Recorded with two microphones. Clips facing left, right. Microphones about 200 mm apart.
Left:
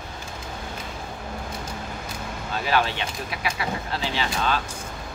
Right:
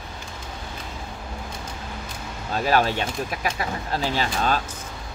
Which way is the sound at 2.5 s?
40° right (ahead or behind).